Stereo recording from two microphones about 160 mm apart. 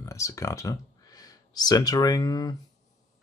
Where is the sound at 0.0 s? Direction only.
20° left (ahead or behind).